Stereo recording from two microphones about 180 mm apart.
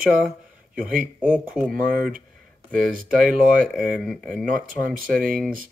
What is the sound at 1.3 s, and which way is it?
Speech, centre (ahead or behind).